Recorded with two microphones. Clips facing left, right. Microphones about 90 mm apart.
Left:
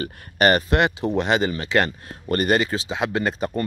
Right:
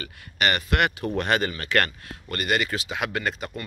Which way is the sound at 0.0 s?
35° left (ahead or behind).